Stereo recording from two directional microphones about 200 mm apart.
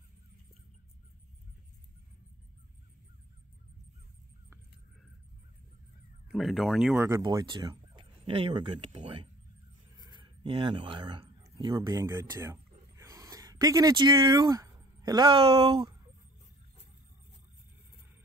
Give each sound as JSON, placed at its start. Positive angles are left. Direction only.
{"t": 6.3, "sound": "speech", "side_deg": 0}